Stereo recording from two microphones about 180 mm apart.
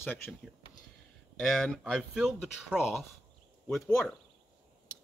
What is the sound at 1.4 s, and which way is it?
Speech, centre (ahead or behind).